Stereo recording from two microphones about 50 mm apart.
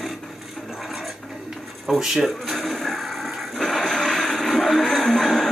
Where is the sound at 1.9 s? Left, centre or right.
Centre.